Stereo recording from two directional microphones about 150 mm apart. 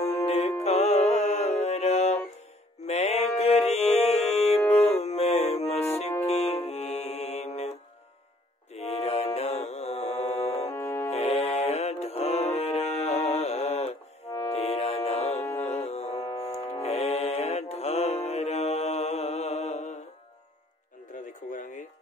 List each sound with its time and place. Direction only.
0.0 s music: 45° left (ahead or behind)
8.7 s music: 45° left (ahead or behind)
10.7 s music: 15° left (ahead or behind)
11.1 s music: 45° left (ahead or behind)
14.2 s music: 20° left (ahead or behind)
14.5 s music: 45° left (ahead or behind)
15.4 s music: 15° left (ahead or behind)
15.9 s music: 45° left (ahead or behind)
16.5 s music: 15° left (ahead or behind)
16.8 s music: 45° left (ahead or behind)
21.1 s music: 60° left (ahead or behind)